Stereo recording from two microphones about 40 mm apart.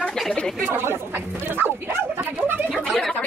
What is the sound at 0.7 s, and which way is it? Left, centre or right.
Speech, right.